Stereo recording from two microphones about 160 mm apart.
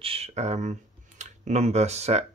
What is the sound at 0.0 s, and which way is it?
Speech, 40° right (ahead or behind).